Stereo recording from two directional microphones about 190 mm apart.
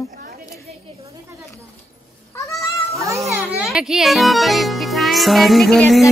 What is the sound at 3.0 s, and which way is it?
Children playing, 15° right (ahead or behind).